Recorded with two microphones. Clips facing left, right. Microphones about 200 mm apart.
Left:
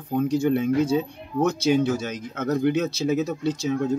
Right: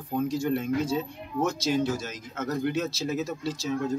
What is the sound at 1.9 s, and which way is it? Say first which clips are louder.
Speech: left 5 dB; 60° left (ahead or behind).